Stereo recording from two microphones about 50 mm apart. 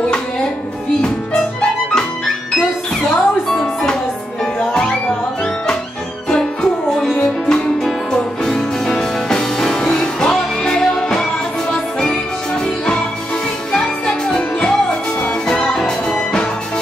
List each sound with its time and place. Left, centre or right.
3.2 s music: centre
6.2 s music: centre
12.6 s music: centre
14.0 s music: centre
15.8 s music: centre